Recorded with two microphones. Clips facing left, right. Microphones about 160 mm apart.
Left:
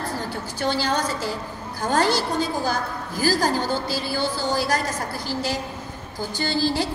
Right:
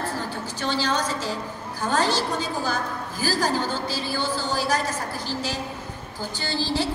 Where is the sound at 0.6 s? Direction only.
15° left (ahead or behind).